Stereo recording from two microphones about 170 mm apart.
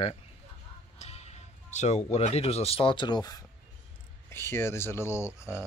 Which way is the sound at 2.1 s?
35° left (ahead or behind).